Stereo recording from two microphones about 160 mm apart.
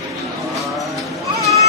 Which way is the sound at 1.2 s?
20° right (ahead or behind).